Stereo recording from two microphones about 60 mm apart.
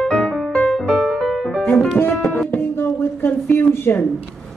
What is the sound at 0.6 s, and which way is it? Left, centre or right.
Music, centre.